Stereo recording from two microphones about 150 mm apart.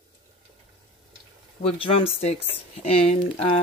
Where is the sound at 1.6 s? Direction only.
40° left (ahead or behind).